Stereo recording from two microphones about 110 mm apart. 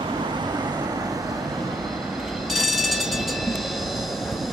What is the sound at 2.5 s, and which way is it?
Train, centre (ahead or behind).